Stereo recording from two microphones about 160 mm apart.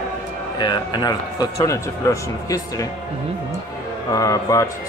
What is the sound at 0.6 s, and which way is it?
A man's voice, 25° left (ahead or behind).